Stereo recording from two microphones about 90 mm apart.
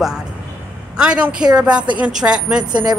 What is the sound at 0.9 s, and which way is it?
Speech, 10° right (ahead or behind).